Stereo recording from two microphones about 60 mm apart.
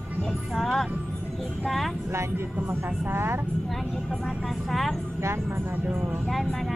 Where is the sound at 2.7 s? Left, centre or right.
Right.